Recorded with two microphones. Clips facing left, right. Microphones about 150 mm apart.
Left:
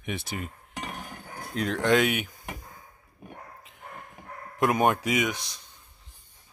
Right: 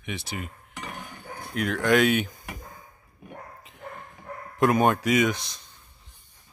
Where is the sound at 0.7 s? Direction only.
30° left (ahead or behind).